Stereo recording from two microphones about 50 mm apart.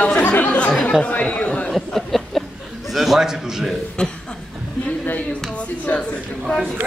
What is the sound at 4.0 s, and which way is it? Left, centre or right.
Speech, centre.